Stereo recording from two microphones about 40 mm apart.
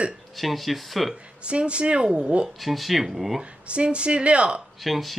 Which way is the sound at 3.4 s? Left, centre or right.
Right.